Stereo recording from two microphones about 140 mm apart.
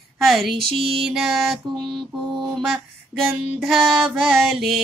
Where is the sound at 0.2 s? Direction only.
Centre (ahead or behind).